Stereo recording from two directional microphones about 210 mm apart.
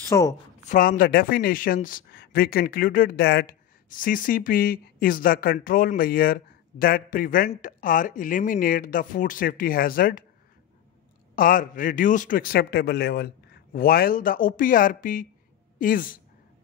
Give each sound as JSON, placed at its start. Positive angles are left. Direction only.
{"t": 0.1, "sound": "a woman's voice", "side_deg": 15}
{"t": 0.7, "sound": "speech", "side_deg": 40}
{"t": 11.3, "sound": "speech", "side_deg": 40}